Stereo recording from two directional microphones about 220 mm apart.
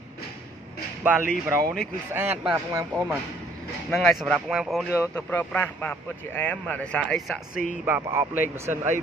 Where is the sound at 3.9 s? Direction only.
Centre (ahead or behind).